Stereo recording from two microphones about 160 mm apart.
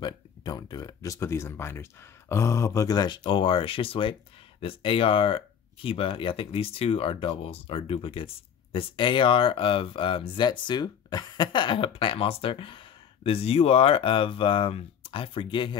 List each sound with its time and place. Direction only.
0.0 s speech: 25° left (ahead or behind)